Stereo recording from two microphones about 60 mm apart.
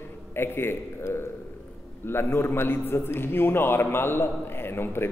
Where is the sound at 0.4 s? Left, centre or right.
Left.